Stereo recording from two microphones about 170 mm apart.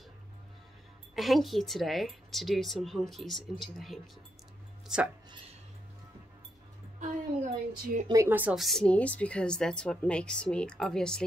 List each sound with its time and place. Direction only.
1.1 s a woman's voice: centre (ahead or behind)
7.0 s a sound: 45° right (ahead or behind)
8.1 s a woman's voice: 15° right (ahead or behind); by 11.2 s 5° left (ahead or behind)